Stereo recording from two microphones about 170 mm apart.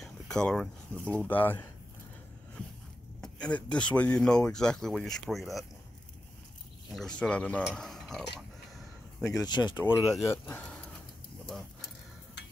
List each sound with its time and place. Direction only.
0.0 s a sound: 5° left (ahead or behind)
1.2 s speech: 10° left (ahead or behind)
3.2 s speech: 5° left (ahead or behind)
6.9 s speech: 5° left (ahead or behind)
9.4 s speech: 25° left (ahead or behind)
9.9 s speech: 10° right (ahead or behind)
10.2 s speech: 15° left (ahead or behind)
11.4 s a sound: centre (ahead or behind)